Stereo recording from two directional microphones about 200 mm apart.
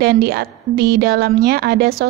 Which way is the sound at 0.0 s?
50° right (ahead or behind).